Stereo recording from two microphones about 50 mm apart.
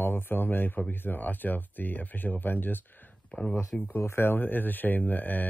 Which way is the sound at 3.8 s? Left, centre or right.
Left.